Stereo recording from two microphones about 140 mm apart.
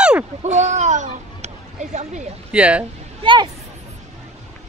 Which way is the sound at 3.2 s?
35° right (ahead or behind).